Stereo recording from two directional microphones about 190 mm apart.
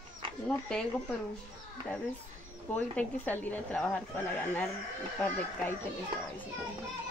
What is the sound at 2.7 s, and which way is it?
A woman's voice, 10° left (ahead or behind).